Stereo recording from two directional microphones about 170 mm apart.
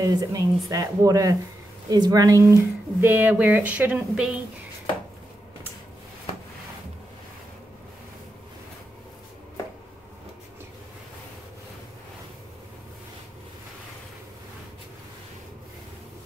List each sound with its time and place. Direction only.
0.0 s a woman's voice: 20° right (ahead or behind); by 4.4 s 5° right (ahead or behind)